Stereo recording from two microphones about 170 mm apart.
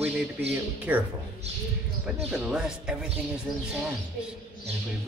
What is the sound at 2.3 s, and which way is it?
Speech, 5° right (ahead or behind).